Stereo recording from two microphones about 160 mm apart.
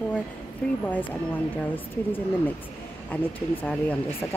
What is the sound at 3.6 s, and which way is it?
Speech, 10° left (ahead or behind).